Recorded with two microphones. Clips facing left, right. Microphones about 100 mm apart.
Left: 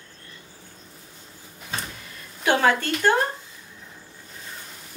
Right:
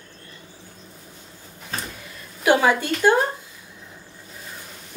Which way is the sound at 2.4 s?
10° right (ahead or behind).